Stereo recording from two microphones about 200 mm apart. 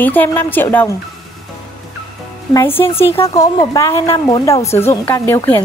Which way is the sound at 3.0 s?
15° left (ahead or behind).